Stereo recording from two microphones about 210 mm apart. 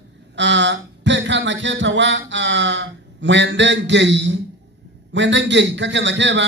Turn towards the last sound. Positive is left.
turn(degrees=-60)  # may be behind; listen again after turning